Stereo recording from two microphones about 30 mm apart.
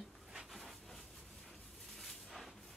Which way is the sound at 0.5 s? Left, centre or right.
Centre.